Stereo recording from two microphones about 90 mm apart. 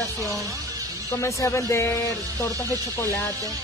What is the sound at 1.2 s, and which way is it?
Speech, 30° left (ahead or behind).